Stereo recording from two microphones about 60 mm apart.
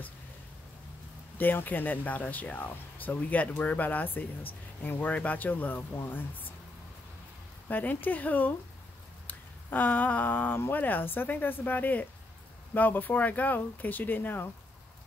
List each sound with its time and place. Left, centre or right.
1.4 s speech: left
7.6 s speech: left